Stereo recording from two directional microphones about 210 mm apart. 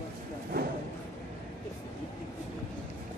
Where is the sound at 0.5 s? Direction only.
45° right (ahead or behind).